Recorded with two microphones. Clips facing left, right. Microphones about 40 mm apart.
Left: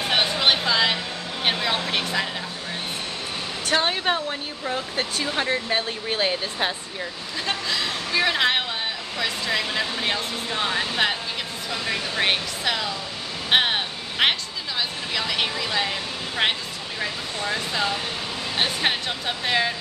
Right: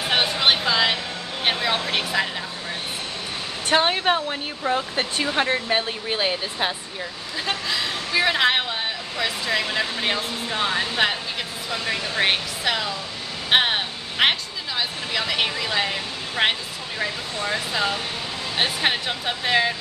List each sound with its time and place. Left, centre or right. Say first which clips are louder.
0.1 s a sound: right 1 dB; centre
1.4 s speech: right 1 dB; centre
3.6 s speech: right 3 dB; centre
4.7 s speech: right 2 dB; right; by 19.7 s centre